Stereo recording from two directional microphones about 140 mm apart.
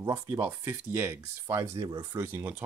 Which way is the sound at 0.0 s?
25° right (ahead or behind).